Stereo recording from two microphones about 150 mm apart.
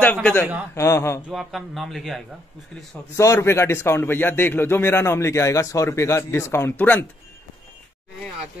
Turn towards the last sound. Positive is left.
turn(degrees=10)  # may be behind; listen again after turning